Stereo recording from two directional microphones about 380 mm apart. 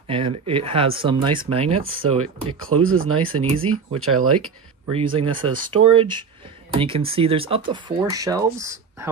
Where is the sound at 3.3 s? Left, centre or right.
Right.